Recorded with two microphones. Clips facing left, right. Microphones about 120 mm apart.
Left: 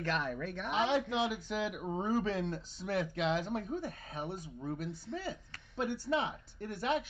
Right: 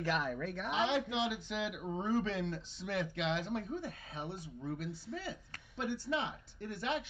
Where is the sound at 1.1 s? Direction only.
40° left (ahead or behind).